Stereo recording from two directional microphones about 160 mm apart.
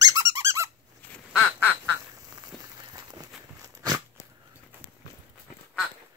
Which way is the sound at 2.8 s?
25° right (ahead or behind).